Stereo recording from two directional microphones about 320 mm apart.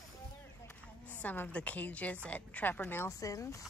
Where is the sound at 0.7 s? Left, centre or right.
Centre.